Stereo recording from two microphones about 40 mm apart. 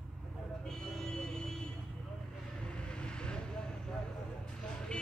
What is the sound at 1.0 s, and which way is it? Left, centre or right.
Vehicle, centre.